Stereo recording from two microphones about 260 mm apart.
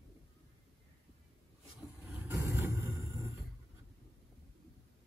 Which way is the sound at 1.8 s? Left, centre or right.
Centre.